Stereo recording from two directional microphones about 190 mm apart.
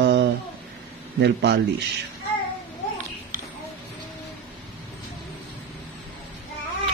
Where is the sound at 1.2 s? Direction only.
65° right (ahead or behind).